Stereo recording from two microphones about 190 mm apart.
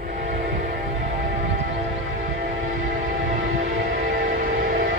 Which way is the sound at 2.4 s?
45° right (ahead or behind).